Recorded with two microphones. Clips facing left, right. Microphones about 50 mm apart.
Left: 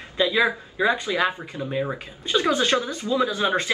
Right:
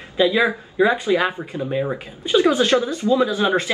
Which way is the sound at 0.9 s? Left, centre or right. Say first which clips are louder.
Right 6 dB; right.